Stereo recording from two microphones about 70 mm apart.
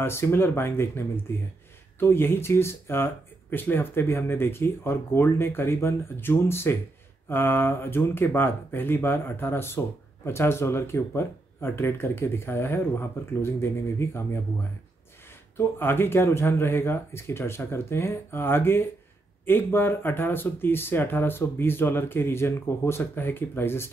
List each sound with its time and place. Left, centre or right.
0.0 s speech: left
15.5 s speech: left